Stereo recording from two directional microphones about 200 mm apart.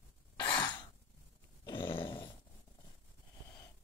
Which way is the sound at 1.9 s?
10° left (ahead or behind).